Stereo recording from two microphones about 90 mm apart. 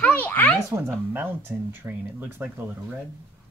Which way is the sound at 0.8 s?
25° right (ahead or behind).